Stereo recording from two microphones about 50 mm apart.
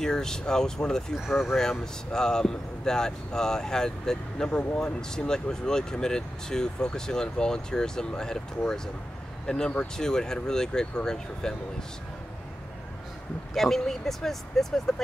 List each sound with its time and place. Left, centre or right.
0.0 s speech: centre
1.1 s speech: centre
1.6 s speech: centre
13.6 s speech: centre